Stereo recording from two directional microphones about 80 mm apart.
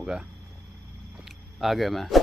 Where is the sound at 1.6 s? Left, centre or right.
Centre.